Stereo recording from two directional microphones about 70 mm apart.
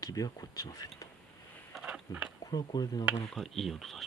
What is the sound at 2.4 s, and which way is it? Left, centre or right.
Speech, left.